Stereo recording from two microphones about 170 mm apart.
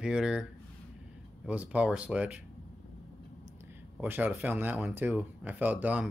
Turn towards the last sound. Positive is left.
turn(degrees=-10)  # may be behind; listen again after turning